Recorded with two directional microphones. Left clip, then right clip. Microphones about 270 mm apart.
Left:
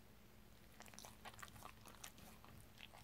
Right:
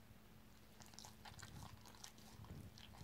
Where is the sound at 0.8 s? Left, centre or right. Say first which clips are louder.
Left 2 dB; centre.